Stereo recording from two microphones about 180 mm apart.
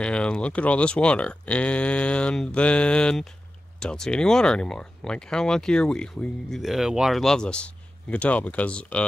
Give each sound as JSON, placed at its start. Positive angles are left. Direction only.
{"t": 0.0, "sound": "speech", "side_deg": 5}